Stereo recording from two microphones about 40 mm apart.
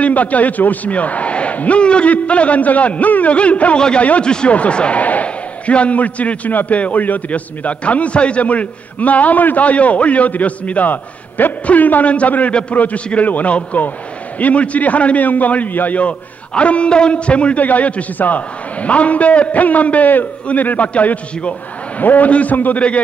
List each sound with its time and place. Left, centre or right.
0.0 s a man's voice: left
3.7 s a man's voice: left
4.5 s a man's voice: left
16.0 s a man's voice: left